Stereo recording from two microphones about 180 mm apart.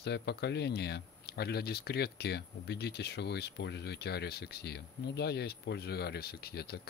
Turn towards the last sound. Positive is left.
turn(degrees=60)  # may be behind; listen again after turning